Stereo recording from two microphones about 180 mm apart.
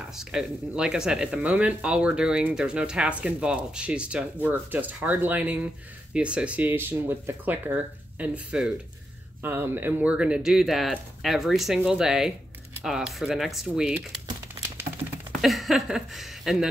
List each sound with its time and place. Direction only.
0.1 s speech: 5° right (ahead or behind)
14.9 s typing: 40° right (ahead or behind)
15.4 s speech: centre (ahead or behind)